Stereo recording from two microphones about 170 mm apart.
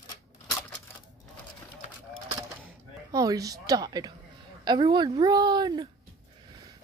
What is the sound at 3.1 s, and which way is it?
A woman's voice, 20° right (ahead or behind).